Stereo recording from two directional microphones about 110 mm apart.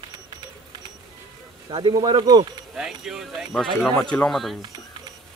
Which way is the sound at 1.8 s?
40° right (ahead or behind).